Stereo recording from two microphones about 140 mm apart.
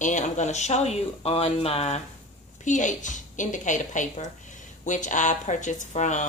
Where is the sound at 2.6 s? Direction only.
65° left (ahead or behind).